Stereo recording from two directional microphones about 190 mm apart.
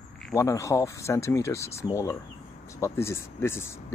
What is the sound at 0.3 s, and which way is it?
Speech, 15° left (ahead or behind).